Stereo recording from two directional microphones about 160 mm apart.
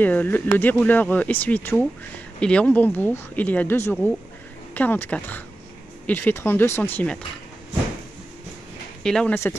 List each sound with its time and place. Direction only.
0.0 s speech: 10° left (ahead or behind)
9.0 s speech: 5° left (ahead or behind)
9.3 s speech: 15° left (ahead or behind)